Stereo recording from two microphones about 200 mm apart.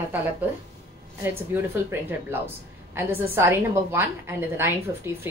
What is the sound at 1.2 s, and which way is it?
A woman's voice, 10° right (ahead or behind).